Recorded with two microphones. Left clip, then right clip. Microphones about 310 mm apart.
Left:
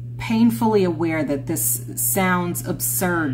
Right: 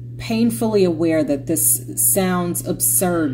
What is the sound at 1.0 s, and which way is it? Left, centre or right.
Speech, centre.